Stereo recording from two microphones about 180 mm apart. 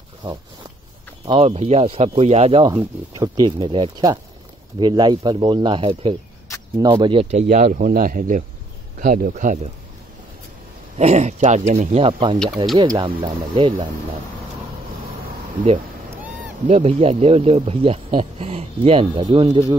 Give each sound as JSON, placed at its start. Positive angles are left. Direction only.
{"t": 1.2, "sound": "speech", "side_deg": -30}
{"t": 11.0, "sound": "speech", "side_deg": -40}
{"t": 16.6, "sound": "speech", "side_deg": -35}